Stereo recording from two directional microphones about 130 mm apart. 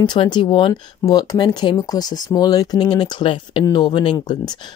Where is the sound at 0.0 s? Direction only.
35° left (ahead or behind).